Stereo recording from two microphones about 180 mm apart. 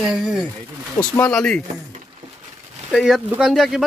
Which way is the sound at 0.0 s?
5° right (ahead or behind).